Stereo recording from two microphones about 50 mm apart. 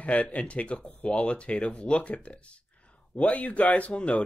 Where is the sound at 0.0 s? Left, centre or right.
Left.